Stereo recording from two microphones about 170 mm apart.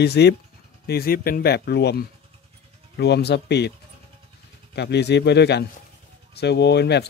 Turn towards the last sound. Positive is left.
turn(degrees=80)